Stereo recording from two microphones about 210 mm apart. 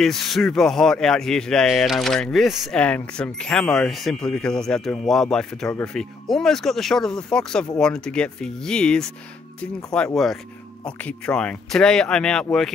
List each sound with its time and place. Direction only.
0.0 s speech: centre (ahead or behind)